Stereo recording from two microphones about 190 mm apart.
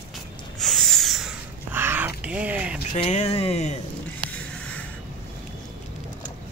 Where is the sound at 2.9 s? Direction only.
35° left (ahead or behind).